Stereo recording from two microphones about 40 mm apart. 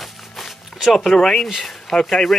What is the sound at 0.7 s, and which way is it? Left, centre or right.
Speech, centre.